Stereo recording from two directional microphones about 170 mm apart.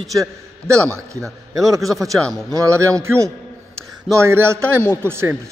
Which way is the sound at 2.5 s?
15° right (ahead or behind).